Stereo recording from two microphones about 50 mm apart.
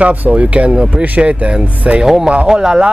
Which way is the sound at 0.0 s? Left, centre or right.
Right.